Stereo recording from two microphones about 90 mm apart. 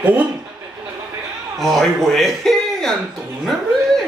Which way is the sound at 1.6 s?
5° left (ahead or behind).